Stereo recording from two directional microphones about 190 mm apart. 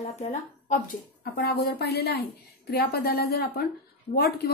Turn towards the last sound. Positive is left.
turn(degrees=55)  # may be behind; listen again after turning